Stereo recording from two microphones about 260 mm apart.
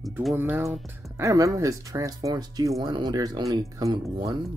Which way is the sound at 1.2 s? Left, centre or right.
Centre.